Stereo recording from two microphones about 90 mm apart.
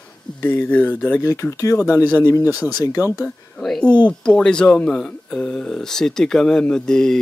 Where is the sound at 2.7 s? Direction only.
40° left (ahead or behind).